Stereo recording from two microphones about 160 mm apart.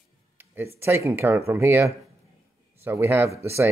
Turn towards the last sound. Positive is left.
turn(degrees=-15)  # may be behind; listen again after turning